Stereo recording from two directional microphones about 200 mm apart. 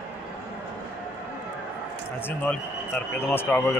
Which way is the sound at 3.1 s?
10° left (ahead or behind).